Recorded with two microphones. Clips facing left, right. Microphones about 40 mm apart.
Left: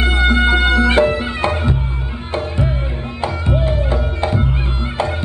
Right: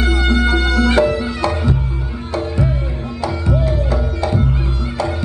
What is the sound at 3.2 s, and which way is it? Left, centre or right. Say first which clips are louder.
Music: even; left.